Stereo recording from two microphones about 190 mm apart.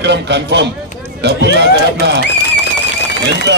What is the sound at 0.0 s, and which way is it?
A man's voice, 65° right (ahead or behind).